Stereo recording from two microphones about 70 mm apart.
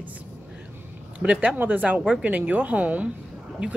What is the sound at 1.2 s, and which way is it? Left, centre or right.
Speech, centre.